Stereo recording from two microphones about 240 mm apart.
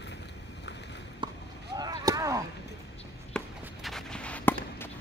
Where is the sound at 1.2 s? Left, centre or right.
Centre.